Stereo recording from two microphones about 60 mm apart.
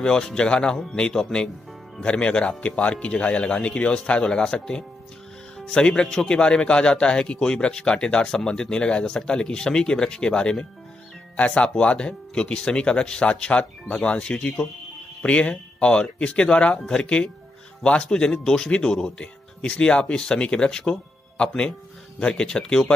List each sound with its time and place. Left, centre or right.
0.0 s speech: centre